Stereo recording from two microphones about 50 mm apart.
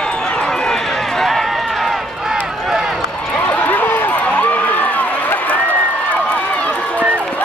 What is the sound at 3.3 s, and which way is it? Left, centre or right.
Run, left.